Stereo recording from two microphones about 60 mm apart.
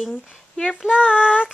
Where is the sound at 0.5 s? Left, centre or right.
Centre.